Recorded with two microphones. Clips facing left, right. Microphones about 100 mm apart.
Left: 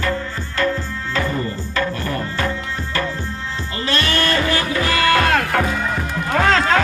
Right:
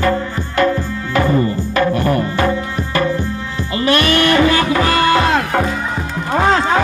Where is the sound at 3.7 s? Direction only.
65° right (ahead or behind).